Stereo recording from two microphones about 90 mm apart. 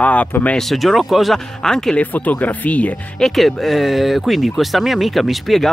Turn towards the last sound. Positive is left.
turn(degrees=0)  # may be behind; listen again after turning